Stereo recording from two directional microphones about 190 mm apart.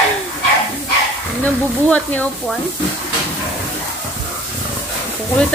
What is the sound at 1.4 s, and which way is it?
Speech, 10° left (ahead or behind).